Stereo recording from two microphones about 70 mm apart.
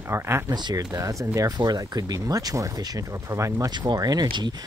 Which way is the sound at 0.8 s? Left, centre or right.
Right.